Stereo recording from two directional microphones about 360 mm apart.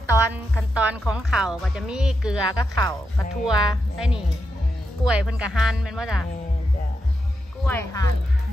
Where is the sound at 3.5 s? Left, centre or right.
Centre.